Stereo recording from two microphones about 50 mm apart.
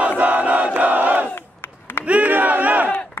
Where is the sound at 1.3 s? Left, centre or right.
Left.